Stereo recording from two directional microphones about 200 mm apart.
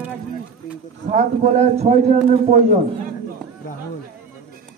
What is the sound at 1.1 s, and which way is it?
A man's voice, 35° right (ahead or behind).